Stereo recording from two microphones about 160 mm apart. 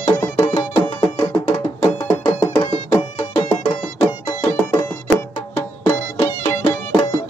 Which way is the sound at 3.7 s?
20° left (ahead or behind).